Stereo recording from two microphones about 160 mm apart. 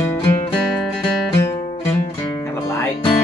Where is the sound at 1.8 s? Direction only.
15° left (ahead or behind).